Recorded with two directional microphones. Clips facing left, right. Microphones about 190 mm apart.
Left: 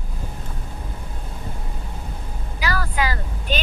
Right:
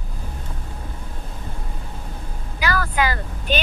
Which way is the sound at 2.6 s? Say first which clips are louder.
Right 2 dB; 60° right (ahead or behind).